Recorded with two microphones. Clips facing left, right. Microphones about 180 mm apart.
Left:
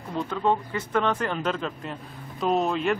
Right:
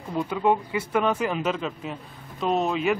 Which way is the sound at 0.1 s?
10° right (ahead or behind).